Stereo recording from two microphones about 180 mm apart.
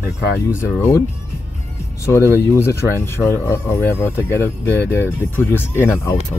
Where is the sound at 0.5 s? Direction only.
15° left (ahead or behind).